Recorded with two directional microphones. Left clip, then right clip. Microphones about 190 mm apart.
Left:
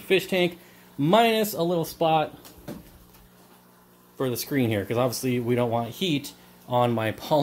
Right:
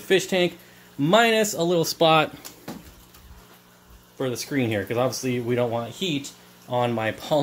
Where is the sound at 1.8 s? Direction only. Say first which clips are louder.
Right 5 dB; 25° right (ahead or behind).